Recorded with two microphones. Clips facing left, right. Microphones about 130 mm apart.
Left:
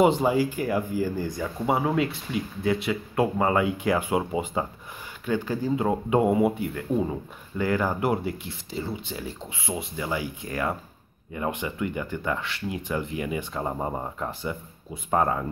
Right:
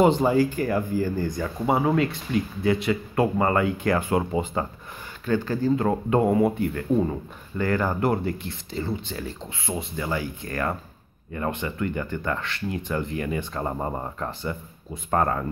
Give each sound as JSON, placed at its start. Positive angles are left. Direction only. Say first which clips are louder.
{"t": 0.0, "sound": "speech", "louder": "right 2 dB", "side_deg": 10}